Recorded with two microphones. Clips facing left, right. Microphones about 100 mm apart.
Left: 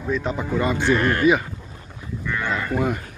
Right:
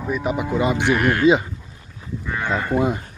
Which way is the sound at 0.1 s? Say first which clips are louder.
Right 1 dB; 15° right (ahead or behind).